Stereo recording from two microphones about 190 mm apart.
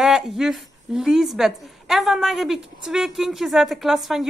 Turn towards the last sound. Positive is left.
turn(degrees=0)  # may be behind; listen again after turning